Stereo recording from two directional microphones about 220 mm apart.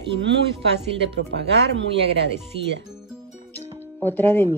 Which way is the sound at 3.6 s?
10° left (ahead or behind).